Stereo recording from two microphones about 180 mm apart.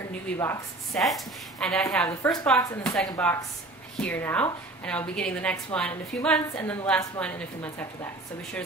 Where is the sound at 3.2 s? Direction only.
5° left (ahead or behind).